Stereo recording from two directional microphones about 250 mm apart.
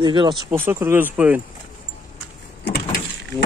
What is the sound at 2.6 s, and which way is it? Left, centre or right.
Power windows, left.